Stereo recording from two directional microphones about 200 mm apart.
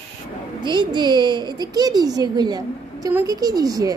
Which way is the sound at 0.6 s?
25° right (ahead or behind).